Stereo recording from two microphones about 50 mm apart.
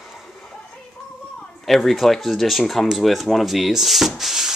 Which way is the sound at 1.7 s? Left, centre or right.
Centre.